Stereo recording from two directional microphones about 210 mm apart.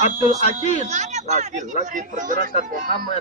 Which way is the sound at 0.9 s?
35° right (ahead or behind).